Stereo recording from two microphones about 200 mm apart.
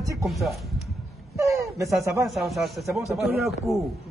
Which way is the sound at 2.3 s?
Centre (ahead or behind).